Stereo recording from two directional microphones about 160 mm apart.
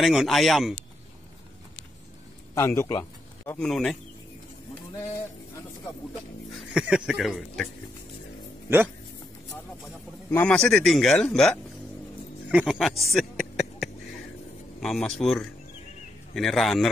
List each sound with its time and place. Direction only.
0.0 s speech: centre (ahead or behind)
2.5 s a sound: 20° left (ahead or behind)
3.5 s speech: 5° left (ahead or behind)
6.5 s speech: 5° right (ahead or behind)
10.3 s speech: 5° left (ahead or behind)
12.4 s speech: 10° right (ahead or behind)